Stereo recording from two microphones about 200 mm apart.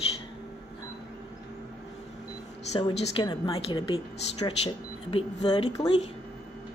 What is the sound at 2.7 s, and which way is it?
A woman's voice, 30° left (ahead or behind).